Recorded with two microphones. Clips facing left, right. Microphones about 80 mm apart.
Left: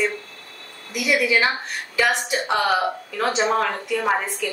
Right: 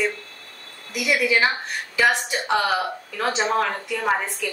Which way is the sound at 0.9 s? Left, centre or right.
Centre.